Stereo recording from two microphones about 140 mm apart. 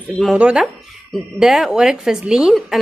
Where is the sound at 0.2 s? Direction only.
5° right (ahead or behind).